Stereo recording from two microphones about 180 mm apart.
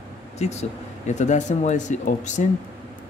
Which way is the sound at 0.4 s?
40° left (ahead or behind).